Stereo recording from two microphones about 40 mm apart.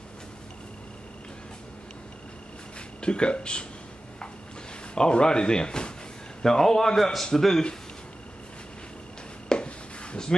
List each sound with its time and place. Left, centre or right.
3.0 s speech: left
4.9 s a man's voice: left
9.5 s a sound: left